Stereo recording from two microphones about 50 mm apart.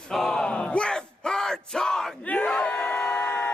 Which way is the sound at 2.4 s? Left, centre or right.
Centre.